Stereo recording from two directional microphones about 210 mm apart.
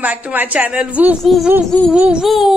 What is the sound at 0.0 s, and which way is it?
Speech, 10° right (ahead or behind).